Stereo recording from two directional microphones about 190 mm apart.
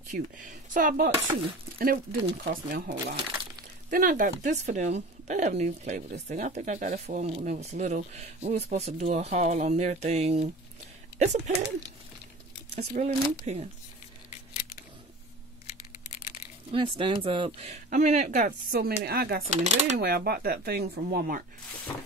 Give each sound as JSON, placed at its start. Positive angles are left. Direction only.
{"t": 0.1, "sound": "speech", "side_deg": -40}
{"t": 1.1, "sound": "speech", "side_deg": -25}
{"t": 2.5, "sound": "speech", "side_deg": -55}
{"t": 3.9, "sound": "speech", "side_deg": -45}
{"t": 12.7, "sound": "speech", "side_deg": -40}
{"t": 16.7, "sound": "speech", "side_deg": -25}
{"t": 17.8, "sound": "speech", "side_deg": -40}
{"t": 19.6, "sound": "speech", "side_deg": -35}
{"t": 20.0, "sound": "speech", "side_deg": -55}